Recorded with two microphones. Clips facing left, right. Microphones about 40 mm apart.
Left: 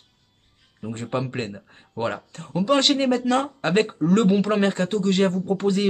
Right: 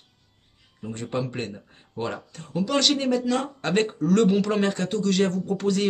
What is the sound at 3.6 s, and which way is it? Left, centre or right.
A man's voice, left.